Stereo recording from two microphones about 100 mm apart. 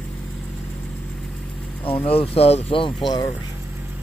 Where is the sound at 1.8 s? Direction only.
70° left (ahead or behind).